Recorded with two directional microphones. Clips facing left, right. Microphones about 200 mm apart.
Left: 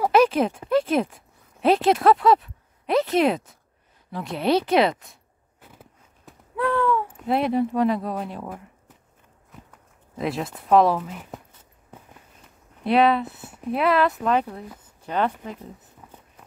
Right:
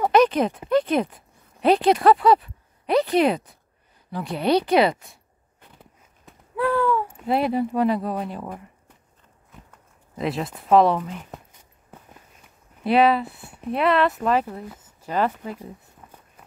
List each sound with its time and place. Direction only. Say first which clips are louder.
0.0 s speech: even; 5° left (ahead or behind)
10.1 s speech: right 1 dB; centre (ahead or behind)
12.8 s speech: right 1 dB; centre (ahead or behind)
13.3 s speech: left 2 dB; 20° left (ahead or behind)
13.7 s speech: even; centre (ahead or behind)